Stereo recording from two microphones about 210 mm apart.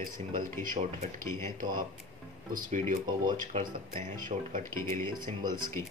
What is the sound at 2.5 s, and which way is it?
Speech, 40° right (ahead or behind).